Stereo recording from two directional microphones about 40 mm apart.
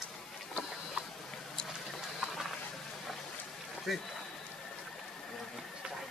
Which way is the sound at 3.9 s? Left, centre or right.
Centre.